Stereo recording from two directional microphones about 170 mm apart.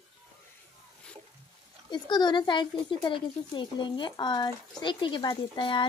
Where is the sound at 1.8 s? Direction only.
25° left (ahead or behind).